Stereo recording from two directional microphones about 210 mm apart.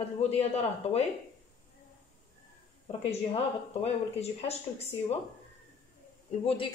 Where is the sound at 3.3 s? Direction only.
30° left (ahead or behind).